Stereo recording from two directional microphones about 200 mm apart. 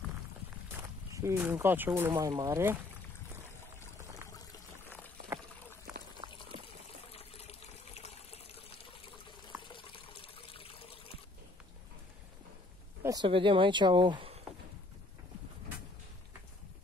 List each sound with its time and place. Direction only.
0.7 s speech: 10° right (ahead or behind)
4.0 s water: 15° right (ahead or behind)
4.3 s water: 15° left (ahead or behind)
7.1 s water: 30° left (ahead or behind)
13.0 s speech: 20° right (ahead or behind)